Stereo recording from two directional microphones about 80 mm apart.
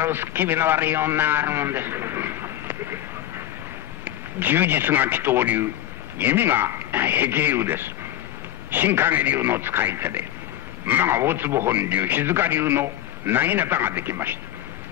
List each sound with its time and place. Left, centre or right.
0.0 s a man's voice: right